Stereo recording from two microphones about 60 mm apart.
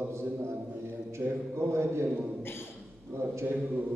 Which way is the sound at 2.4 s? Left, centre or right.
Left.